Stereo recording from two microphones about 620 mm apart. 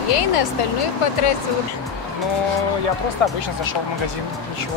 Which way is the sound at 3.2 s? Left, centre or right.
Left.